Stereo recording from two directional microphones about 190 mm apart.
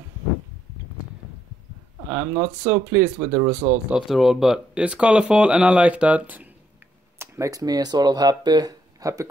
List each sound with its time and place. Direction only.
2.0 s speech: 10° right (ahead or behind)